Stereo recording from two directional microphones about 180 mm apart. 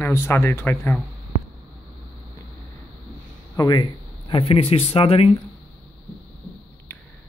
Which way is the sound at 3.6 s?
25° left (ahead or behind).